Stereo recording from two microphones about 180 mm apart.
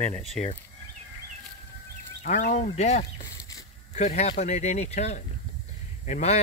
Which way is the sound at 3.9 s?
40° left (ahead or behind).